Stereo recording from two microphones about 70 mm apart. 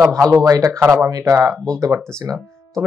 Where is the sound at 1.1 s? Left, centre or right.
Right.